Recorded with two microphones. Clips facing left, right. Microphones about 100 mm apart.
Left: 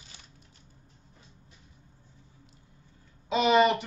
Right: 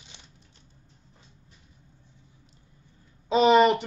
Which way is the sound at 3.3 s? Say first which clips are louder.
Right 4 dB; 35° right (ahead or behind).